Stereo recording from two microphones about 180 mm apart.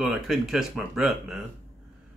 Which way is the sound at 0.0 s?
Centre (ahead or behind).